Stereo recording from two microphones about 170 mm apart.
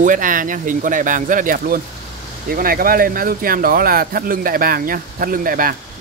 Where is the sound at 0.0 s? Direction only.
50° right (ahead or behind).